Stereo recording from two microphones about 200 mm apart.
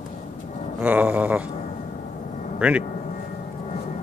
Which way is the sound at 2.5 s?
5° right (ahead or behind).